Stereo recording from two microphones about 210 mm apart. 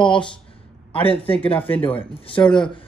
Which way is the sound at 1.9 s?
25° left (ahead or behind).